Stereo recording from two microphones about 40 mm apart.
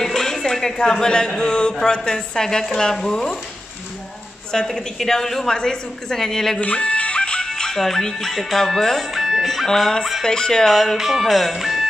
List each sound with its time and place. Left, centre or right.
0.0 s a woman's voice: centre
4.7 s a woman's voice: centre
6.6 s speech: left; by 9.7 s centre
9.7 s a woman's voice: centre
11.0 s speech: centre